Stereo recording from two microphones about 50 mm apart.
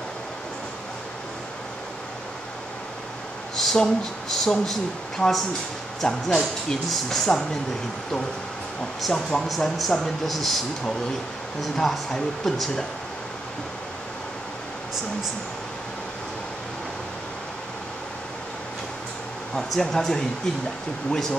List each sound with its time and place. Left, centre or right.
3.5 s speech: centre
9.1 s speech: centre
11.7 s speech: centre
19.5 s speech: centre